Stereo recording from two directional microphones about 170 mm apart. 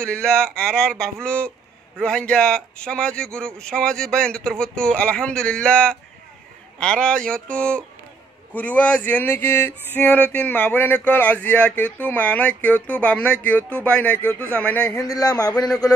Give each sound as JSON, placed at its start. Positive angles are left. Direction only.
{"t": 0.0, "sound": "a man's voice", "side_deg": 5}
{"t": 15.0, "sound": "speech", "side_deg": 20}